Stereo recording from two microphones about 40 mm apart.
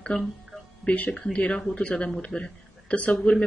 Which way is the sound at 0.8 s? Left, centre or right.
Left.